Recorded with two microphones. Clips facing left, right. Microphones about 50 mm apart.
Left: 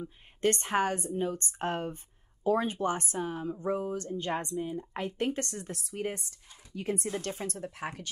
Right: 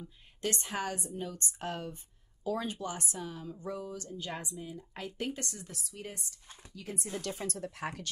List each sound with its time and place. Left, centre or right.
0.0 s speech: left
7.3 s speech: left